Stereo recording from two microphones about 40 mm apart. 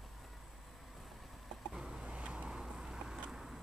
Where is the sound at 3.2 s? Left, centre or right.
Centre.